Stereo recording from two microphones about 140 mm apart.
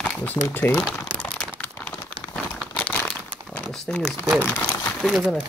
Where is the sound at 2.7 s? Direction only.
10° left (ahead or behind).